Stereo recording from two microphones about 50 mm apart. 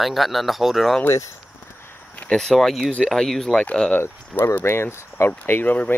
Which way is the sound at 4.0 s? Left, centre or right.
Left.